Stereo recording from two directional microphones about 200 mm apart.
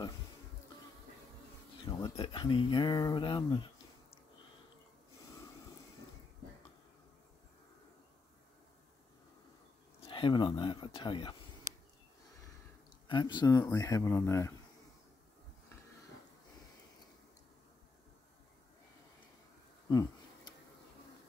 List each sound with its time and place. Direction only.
1.9 s speech: 20° left (ahead or behind)
9.9 s speech: 20° left (ahead or behind)
13.1 s speech: 20° left (ahead or behind)
19.9 s a sound: 20° left (ahead or behind)